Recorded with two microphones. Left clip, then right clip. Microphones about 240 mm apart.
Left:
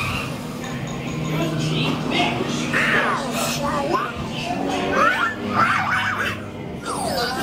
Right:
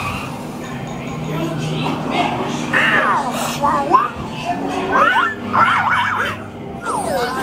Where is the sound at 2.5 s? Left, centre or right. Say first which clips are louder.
Right 7 dB; centre.